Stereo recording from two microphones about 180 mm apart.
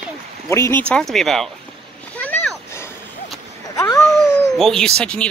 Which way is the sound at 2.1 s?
5° left (ahead or behind).